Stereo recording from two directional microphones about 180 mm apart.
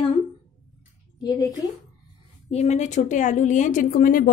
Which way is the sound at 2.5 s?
40° left (ahead or behind).